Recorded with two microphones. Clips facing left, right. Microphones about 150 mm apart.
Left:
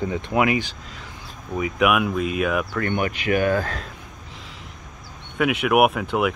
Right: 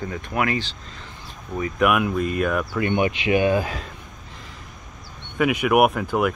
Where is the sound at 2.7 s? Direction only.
15° right (ahead or behind).